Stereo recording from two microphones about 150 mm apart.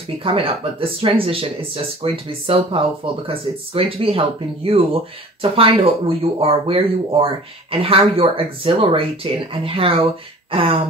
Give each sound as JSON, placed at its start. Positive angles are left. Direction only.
{"t": 0.2, "sound": "speech", "side_deg": -40}